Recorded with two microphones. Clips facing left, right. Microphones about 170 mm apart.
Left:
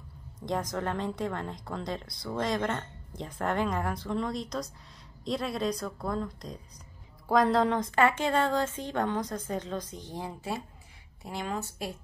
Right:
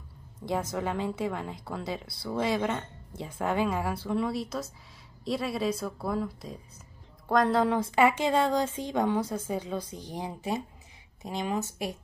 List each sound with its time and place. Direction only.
0.5 s a woman's voice: 5° right (ahead or behind)